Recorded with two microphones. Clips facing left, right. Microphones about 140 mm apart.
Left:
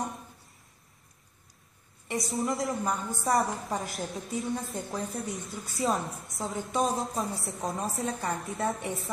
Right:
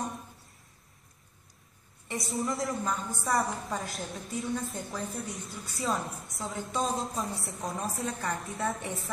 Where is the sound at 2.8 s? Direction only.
25° left (ahead or behind).